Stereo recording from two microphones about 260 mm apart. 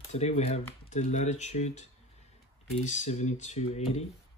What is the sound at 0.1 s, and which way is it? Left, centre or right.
Speech, left.